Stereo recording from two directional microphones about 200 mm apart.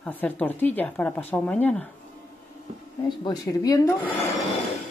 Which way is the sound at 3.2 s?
15° left (ahead or behind).